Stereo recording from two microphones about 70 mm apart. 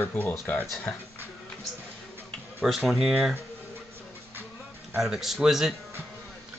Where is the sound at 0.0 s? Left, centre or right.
Left.